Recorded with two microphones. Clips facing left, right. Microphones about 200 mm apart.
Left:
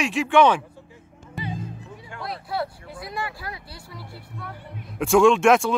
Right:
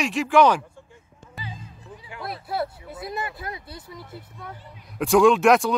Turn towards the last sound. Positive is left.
turn(degrees=0)  # may be behind; listen again after turning